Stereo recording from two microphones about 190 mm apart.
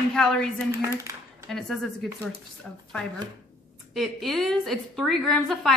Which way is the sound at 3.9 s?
Centre (ahead or behind).